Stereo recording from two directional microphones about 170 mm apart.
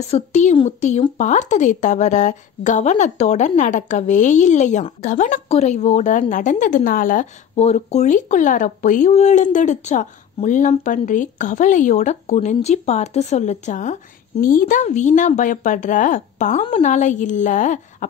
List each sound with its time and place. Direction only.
0.1 s speech: 40° left (ahead or behind)
7.5 s speech: 40° left (ahead or behind)